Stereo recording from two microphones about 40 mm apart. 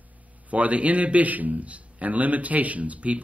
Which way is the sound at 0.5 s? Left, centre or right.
Right.